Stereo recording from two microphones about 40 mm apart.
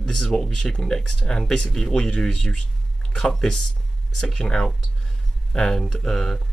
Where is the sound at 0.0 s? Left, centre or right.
Centre.